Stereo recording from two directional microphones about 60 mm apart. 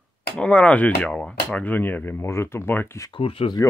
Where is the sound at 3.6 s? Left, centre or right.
Left.